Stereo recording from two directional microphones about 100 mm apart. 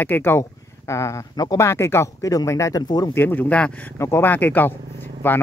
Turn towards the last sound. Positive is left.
turn(degrees=20)  # may be behind; listen again after turning